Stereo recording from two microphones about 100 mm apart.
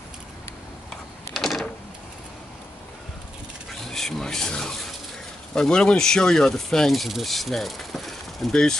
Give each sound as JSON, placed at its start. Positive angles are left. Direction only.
{"t": 1.3, "sound": "printer", "side_deg": 0}
{"t": 3.7, "sound": "rub", "side_deg": 5}
{"t": 5.5, "sound": "speech", "side_deg": 5}